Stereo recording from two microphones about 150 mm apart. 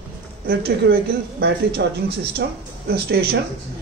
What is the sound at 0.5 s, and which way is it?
A man's voice, 90° right.